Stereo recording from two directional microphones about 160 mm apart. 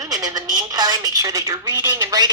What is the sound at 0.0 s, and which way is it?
A woman's voice, 25° right (ahead or behind).